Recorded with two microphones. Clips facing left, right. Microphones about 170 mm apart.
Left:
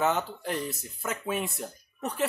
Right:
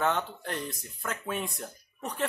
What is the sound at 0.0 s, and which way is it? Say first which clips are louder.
Speech: left 2 dB; 5° left (ahead or behind).